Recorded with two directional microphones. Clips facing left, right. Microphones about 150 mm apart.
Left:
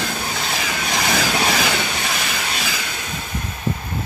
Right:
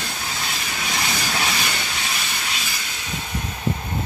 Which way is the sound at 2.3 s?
90° left.